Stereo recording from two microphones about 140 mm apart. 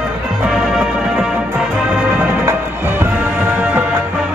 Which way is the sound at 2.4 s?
15° right (ahead or behind).